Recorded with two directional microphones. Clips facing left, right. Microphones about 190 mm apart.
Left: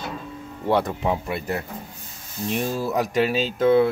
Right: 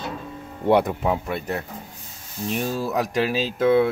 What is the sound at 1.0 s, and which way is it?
Speech, centre (ahead or behind).